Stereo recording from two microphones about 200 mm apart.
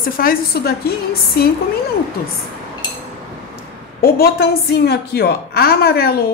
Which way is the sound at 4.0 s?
50° left (ahead or behind).